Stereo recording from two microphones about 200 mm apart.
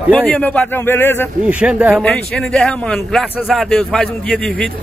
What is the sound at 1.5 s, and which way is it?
A man's voice, 5° right (ahead or behind).